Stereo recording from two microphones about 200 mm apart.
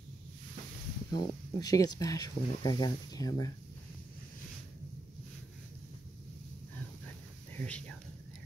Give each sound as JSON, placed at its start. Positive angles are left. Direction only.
{"t": 1.1, "sound": "speech", "side_deg": 20}
{"t": 7.5, "sound": "speech", "side_deg": 5}